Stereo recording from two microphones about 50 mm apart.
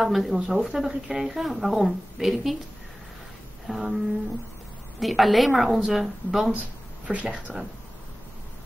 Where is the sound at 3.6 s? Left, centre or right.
Centre.